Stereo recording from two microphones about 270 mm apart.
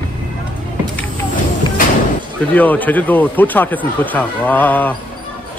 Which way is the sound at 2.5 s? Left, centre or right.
Centre.